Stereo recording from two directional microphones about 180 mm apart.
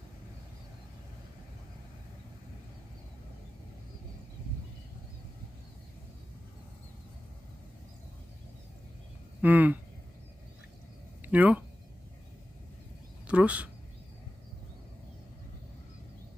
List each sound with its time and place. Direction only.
9.4 s speech: 10° right (ahead or behind)
11.2 s speech: 10° right (ahead or behind)
13.3 s speech: 10° right (ahead or behind)